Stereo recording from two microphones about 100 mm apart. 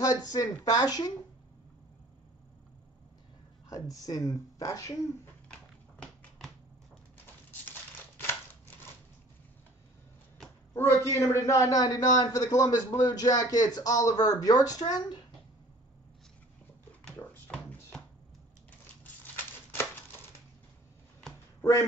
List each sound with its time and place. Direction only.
0.0 s a man's voice: 40° left (ahead or behind)
3.6 s a man's voice: 35° left (ahead or behind)
5.5 s a sound: 5° left (ahead or behind)
10.7 s a man's voice: 25° left (ahead or behind); by 15.2 s 45° left (ahead or behind)
17.5 s music: 10° left (ahead or behind)